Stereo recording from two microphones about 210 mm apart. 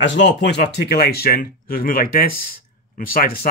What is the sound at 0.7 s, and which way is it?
Speech, 50° left (ahead or behind).